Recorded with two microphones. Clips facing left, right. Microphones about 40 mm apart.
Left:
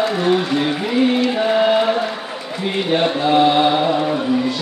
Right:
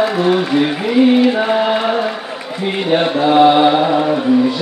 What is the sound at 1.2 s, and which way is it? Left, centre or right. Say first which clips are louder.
Music: right 3 dB; centre.